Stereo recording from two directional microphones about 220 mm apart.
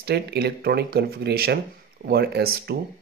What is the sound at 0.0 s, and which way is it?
Speech, 50° right (ahead or behind).